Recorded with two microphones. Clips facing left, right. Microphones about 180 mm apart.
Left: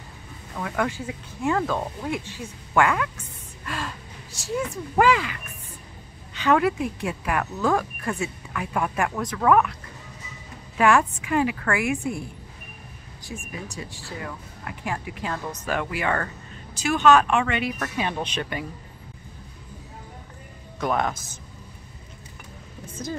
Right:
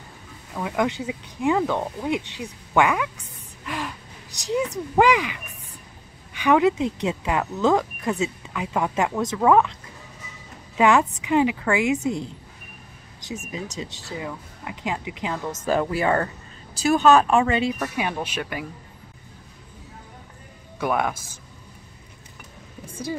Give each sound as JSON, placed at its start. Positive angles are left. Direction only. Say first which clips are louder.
{"t": 0.6, "sound": "speech", "louder": "right 3 dB", "side_deg": -15}
{"t": 3.6, "sound": "a sound", "louder": "right 2 dB", "side_deg": -15}
{"t": 4.4, "sound": "speech", "louder": "right 3 dB", "side_deg": -20}
{"t": 10.8, "sound": "speech", "louder": "right 1 dB", "side_deg": -20}
{"t": 15.6, "sound": "speech", "louder": "right 6 dB", "side_deg": -35}
{"t": 17.7, "sound": "speech", "louder": "right 1 dB", "side_deg": -10}
{"t": 20.8, "sound": "speech", "louder": "right 1 dB", "side_deg": -10}